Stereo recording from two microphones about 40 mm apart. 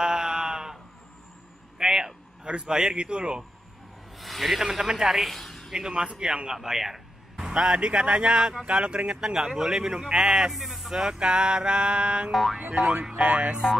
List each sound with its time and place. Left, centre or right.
0.0 s sheep: centre
1.8 s a sound: centre
4.2 s speech: centre
4.6 s speech: centre
5.3 s a sound: centre
5.7 s speech: right
6.6 s speech: centre
10.5 s a sound: centre
10.9 s speech: centre
12.3 s boing: centre
13.1 s speech: right